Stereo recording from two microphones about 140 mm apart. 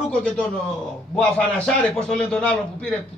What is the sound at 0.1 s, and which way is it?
A man's voice, 5° left (ahead or behind).